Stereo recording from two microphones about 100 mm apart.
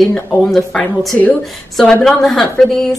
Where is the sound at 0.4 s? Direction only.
5° left (ahead or behind).